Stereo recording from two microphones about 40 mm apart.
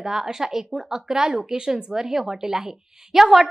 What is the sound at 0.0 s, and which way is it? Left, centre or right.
A woman's voice, centre.